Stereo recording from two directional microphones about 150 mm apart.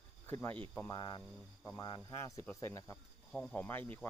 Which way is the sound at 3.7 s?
15° left (ahead or behind).